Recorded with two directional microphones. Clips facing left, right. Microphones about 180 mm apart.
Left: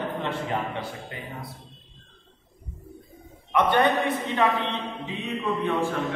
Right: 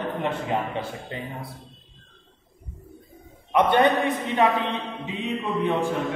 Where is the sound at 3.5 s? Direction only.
15° right (ahead or behind).